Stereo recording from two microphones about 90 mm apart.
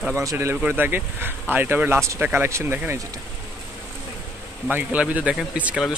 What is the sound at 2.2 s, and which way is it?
Speech, 20° right (ahead or behind).